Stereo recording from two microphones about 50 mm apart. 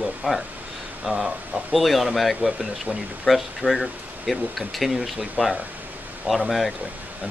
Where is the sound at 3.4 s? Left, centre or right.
Right.